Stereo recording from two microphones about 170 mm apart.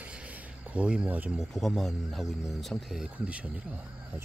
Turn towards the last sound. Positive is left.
turn(degrees=-5)  # may be behind; listen again after turning